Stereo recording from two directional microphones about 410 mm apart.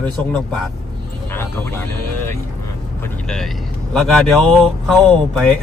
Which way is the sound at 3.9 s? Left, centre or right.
Centre.